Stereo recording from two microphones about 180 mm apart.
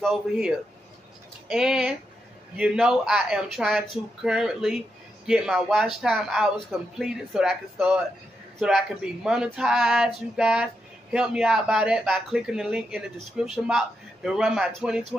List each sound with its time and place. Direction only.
0.0 s speech: centre (ahead or behind)